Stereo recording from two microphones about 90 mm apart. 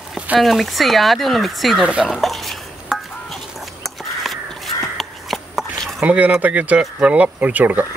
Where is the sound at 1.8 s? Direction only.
10° right (ahead or behind).